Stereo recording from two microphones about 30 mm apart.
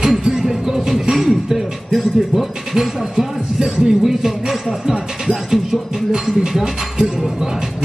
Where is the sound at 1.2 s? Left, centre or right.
Centre.